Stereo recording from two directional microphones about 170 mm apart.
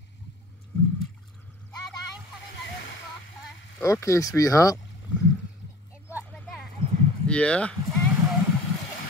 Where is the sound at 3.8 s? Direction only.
15° left (ahead or behind).